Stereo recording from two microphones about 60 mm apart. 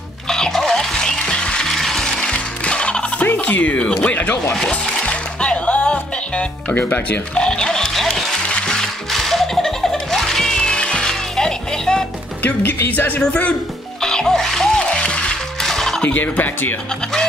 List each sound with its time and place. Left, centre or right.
0.3 s music: centre
3.3 s speech: left
4.6 s music: centre; by 7.4 s left
7.4 s music: centre
9.1 s music: centre
12.4 s speech: left
13.2 s fowl: centre
14.0 s music: centre
14.9 s music: centre
15.6 s music: centre
16.0 s fowl: left